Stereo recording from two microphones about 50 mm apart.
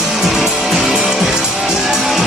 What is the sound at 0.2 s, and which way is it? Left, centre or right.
Music, centre.